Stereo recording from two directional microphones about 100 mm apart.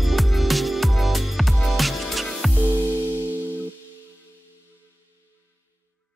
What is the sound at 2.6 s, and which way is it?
Music, 15° right (ahead or behind).